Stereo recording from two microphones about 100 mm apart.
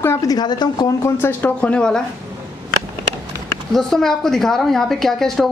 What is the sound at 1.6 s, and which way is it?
Speech, 10° left (ahead or behind).